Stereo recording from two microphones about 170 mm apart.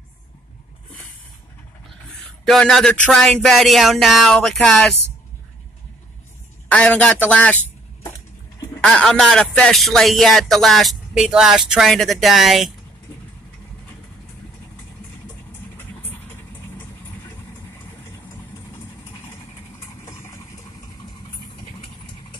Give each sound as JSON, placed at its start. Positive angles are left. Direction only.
{"t": 2.4, "sound": "speech", "side_deg": 5}
{"t": 6.7, "sound": "speech", "side_deg": 5}
{"t": 8.8, "sound": "speech", "side_deg": 5}
{"t": 16.1, "sound": "vehicle", "side_deg": 10}
{"t": 20.1, "sound": "vehicle", "side_deg": 20}